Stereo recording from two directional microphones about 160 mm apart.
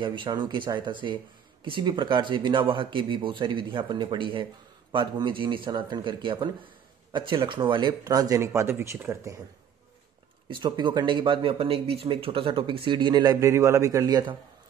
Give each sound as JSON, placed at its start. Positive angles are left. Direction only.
{"t": 0.0, "sound": "speech", "side_deg": -30}
{"t": 10.6, "sound": "speech", "side_deg": -30}